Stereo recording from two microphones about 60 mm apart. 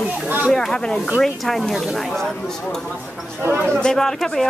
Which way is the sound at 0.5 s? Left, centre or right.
Centre.